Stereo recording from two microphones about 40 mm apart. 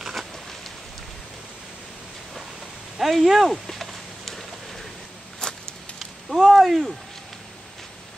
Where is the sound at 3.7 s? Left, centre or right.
Centre.